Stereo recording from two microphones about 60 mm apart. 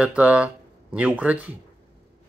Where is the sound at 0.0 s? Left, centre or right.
Right.